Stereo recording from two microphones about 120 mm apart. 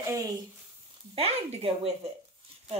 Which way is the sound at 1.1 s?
55° right (ahead or behind).